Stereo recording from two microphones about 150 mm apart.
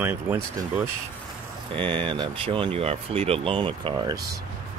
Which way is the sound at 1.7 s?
35° right (ahead or behind).